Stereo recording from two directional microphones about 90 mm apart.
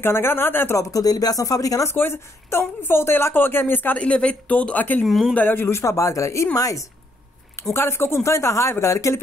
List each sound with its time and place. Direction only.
0.0 s a woman's voice: 25° left (ahead or behind)
0.7 s a woman's voice: 40° left (ahead or behind)
2.0 s a woman's voice: 25° left (ahead or behind)
5.0 s speech: centre (ahead or behind)
5.3 s a woman's voice: 20° left (ahead or behind)